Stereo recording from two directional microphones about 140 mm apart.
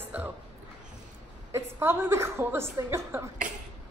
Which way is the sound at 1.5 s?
20° right (ahead or behind).